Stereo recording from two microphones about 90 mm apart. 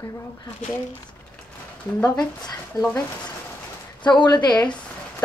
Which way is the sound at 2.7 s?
45° left (ahead or behind).